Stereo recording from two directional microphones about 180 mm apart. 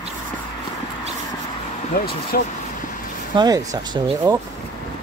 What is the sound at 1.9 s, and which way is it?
Speech, 55° left (ahead or behind).